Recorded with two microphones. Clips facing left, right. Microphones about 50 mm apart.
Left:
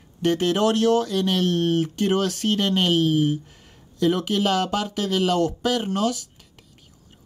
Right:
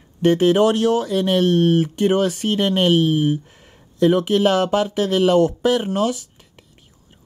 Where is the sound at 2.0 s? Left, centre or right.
Centre.